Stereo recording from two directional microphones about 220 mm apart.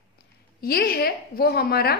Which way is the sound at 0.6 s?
45° left (ahead or behind).